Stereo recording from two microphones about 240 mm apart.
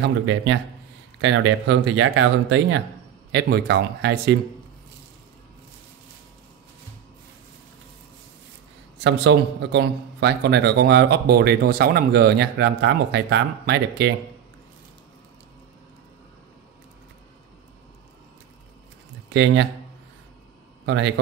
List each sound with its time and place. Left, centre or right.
1.2 s a man's voice: right
8.9 s a man's voice: right
19.2 s speech: right
20.8 s a man's voice: right